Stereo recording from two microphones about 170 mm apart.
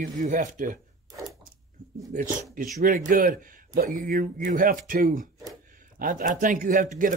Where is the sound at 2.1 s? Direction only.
50° right (ahead or behind).